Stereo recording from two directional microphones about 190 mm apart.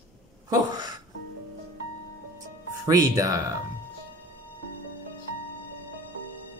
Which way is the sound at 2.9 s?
20° right (ahead or behind).